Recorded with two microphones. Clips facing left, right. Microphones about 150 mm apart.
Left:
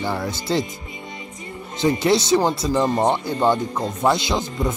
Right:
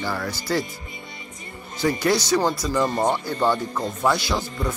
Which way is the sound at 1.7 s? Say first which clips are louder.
Left 3 dB; 25° left (ahead or behind).